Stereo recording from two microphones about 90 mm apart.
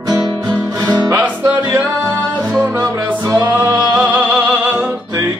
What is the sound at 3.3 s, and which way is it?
Music, 45° right (ahead or behind).